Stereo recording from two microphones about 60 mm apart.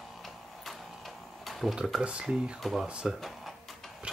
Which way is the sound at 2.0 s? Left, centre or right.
Centre.